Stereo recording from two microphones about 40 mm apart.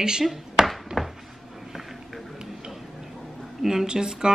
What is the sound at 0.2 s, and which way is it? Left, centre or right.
Speech, centre.